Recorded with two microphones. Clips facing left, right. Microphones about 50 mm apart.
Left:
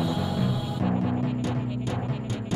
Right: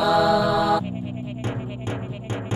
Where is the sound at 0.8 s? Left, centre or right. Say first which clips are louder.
Left 5 dB; left.